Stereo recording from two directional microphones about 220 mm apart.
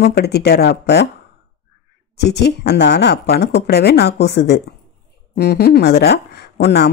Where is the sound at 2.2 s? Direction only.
50° left (ahead or behind).